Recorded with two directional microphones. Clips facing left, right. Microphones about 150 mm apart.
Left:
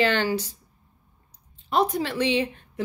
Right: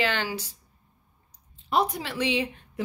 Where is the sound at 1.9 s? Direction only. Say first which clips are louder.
Left 4 dB; 10° right (ahead or behind).